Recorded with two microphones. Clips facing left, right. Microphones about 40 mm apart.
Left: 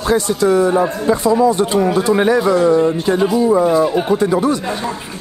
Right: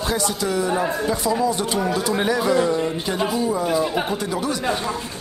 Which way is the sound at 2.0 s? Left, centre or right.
Left.